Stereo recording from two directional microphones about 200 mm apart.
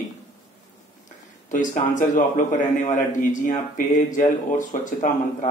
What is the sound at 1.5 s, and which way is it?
Speech, 40° left (ahead or behind).